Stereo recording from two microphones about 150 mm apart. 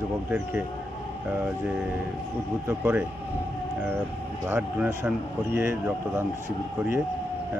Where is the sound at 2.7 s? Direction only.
10° right (ahead or behind).